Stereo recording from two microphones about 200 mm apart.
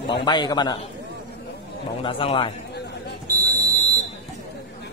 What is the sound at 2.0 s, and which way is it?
Speech, 25° left (ahead or behind).